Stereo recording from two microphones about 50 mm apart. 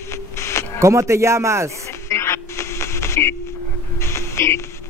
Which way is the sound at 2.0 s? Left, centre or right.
Left.